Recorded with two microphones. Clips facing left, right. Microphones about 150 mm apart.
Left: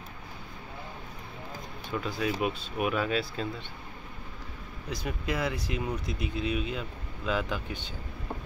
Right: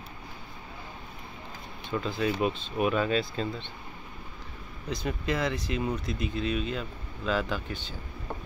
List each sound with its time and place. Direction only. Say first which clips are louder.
1.9 s speech: right 2 dB; 10° left (ahead or behind)
4.8 s speech: right 3 dB; 10° left (ahead or behind)